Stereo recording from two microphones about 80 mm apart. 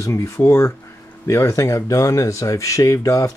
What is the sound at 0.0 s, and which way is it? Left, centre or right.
Speech, left.